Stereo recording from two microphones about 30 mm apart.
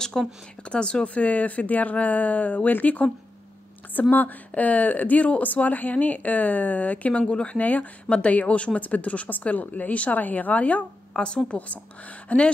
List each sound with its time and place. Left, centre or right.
0.2 s speech: centre
0.7 s speech: left
1.0 s speech: left
4.1 s speech: left
4.6 s speech: left
7.5 s speech: left
8.5 s speech: left
8.8 s speech: left
9.4 s speech: left
10.1 s speech: left
11.2 s speech: left
11.5 s speech: left